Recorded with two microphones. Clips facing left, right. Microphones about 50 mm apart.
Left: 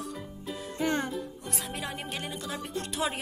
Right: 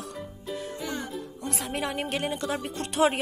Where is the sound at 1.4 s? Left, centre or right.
Right.